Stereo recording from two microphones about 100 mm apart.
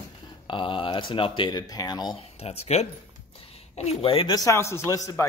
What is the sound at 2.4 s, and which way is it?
Speech, 90° left.